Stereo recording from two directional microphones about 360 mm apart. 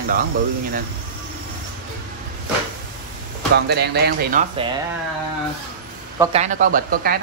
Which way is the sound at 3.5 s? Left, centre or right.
Right.